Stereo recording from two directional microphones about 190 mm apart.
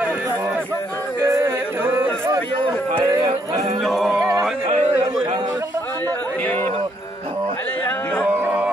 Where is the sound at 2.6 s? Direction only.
25° right (ahead or behind).